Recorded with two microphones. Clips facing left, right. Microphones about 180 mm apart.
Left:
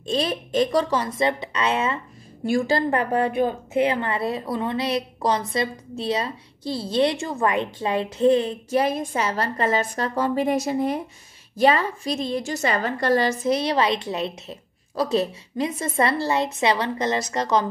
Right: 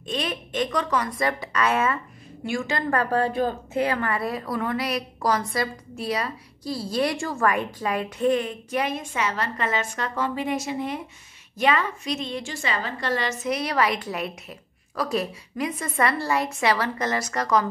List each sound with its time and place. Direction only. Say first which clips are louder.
0.0 s speech: left 5 dB; 30° left (ahead or behind)
2.4 s a woman's voice: left 6 dB; 35° left (ahead or behind)
2.9 s speech: left 1 dB; 20° left (ahead or behind)